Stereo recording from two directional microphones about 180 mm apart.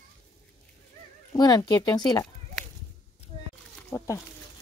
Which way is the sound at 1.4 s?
20° left (ahead or behind).